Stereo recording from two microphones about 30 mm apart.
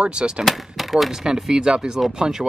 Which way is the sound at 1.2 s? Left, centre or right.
Centre.